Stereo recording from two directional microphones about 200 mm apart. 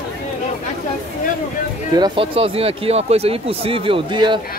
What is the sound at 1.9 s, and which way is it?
Speech, 25° right (ahead or behind).